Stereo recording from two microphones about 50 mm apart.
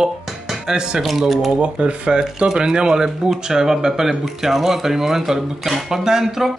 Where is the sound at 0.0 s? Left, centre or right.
Centre.